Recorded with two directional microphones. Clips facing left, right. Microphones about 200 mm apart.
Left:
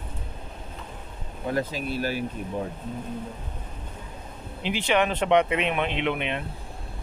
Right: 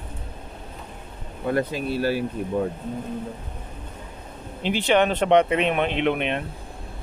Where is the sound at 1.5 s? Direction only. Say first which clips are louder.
Right 4 dB; 60° right (ahead or behind).